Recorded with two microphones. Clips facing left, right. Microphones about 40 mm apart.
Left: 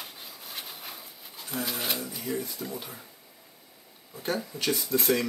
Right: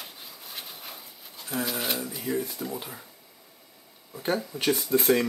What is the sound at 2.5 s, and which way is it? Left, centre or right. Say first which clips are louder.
Speech: right 2 dB; centre.